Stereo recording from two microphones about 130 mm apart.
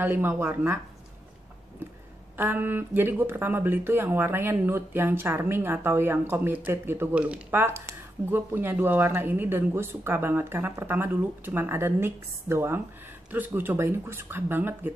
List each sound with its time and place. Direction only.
0.0 s speech: 15° right (ahead or behind)
2.3 s speech: 15° right (ahead or behind)